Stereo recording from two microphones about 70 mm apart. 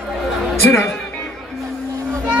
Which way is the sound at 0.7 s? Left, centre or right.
Left.